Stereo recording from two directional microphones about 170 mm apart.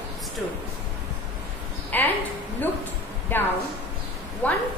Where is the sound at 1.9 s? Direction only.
10° left (ahead or behind).